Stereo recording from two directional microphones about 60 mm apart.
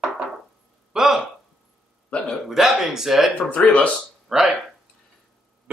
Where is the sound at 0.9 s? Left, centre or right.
Centre.